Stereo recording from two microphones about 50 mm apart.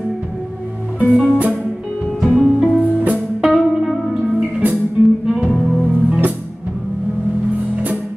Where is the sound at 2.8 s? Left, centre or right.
Right.